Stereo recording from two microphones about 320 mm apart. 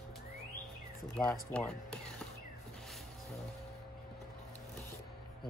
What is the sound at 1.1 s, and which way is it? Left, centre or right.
Speech, centre.